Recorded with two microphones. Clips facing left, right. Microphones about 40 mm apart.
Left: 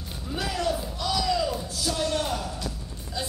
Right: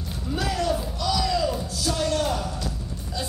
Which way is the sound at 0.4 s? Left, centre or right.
Centre.